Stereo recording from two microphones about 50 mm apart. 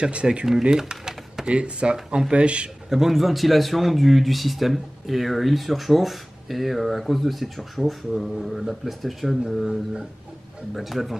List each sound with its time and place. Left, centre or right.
0.0 s speech: right
0.5 s typewriter: centre
1.5 s speech: right
2.9 s a man's voice: centre